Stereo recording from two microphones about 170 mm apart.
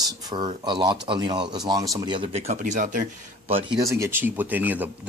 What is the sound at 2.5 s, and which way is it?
Speech, 50° right (ahead or behind).